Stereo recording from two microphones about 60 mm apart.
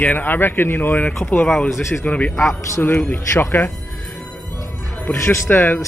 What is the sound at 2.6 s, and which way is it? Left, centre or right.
Speech, left.